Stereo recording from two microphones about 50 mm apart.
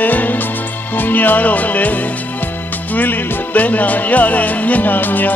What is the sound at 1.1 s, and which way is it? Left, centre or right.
Speech, left.